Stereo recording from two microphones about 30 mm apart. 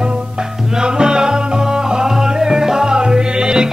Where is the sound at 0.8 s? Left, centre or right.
Right.